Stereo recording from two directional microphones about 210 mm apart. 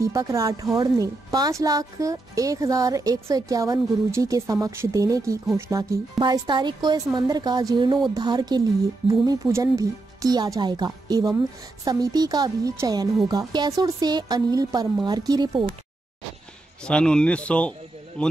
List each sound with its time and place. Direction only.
0.0 s speech: 15° right (ahead or behind)
16.8 s speech: 5° left (ahead or behind)